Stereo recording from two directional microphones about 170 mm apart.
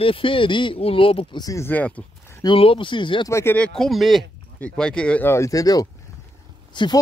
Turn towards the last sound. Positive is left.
turn(degrees=25)  # may be behind; listen again after turning